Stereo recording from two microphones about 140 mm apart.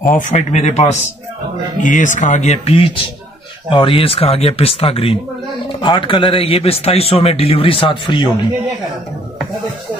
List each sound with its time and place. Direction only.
0.0 s speech: 70° left (ahead or behind); by 1.0 s 55° left (ahead or behind)
1.8 s a man's voice: 65° left (ahead or behind); by 8.3 s 35° left (ahead or behind)